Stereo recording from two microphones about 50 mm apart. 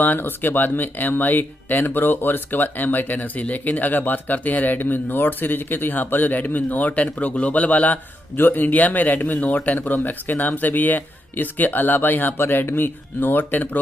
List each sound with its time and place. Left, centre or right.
0.0 s speech: left